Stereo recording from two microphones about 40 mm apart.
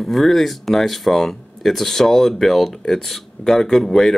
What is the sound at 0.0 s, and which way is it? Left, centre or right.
Speech, centre.